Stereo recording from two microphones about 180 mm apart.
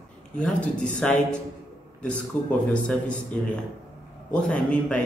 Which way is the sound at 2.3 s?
10° left (ahead or behind).